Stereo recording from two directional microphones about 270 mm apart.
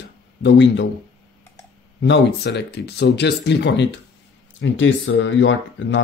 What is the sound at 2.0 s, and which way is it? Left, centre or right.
Speech, left.